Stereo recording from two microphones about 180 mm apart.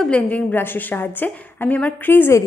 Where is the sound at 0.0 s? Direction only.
5° left (ahead or behind).